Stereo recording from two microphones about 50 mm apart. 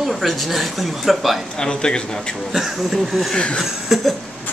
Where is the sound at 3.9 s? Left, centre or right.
Centre.